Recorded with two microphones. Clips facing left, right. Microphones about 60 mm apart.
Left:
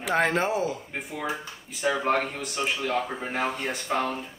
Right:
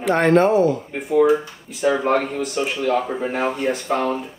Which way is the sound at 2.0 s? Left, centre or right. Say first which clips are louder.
Right 6 dB; centre.